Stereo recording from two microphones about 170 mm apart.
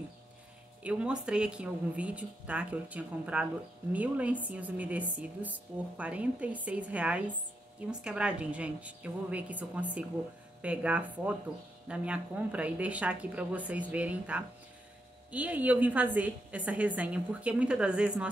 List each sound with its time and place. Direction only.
0.8 s a woman's voice: 5° right (ahead or behind)